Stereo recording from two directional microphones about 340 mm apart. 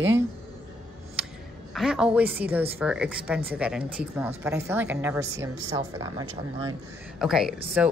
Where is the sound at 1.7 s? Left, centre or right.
Centre.